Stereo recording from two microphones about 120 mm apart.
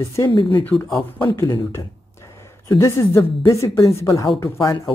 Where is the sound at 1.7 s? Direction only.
20° left (ahead or behind).